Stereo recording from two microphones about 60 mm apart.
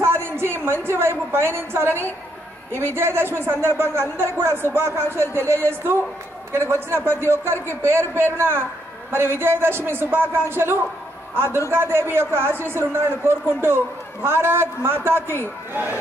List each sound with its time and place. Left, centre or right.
0.0 s a woman's voice: right